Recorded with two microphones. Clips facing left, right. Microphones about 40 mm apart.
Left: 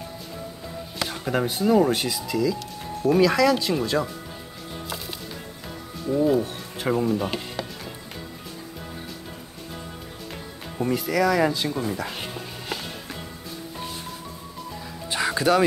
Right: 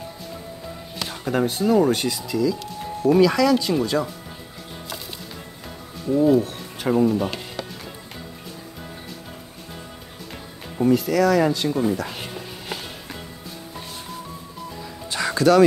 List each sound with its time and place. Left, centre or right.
1.0 s speech: centre
4.8 s a sound: centre
5.9 s speech: centre
6.8 s music: centre
10.3 s speech: centre
11.9 s music: centre
15.0 s music: centre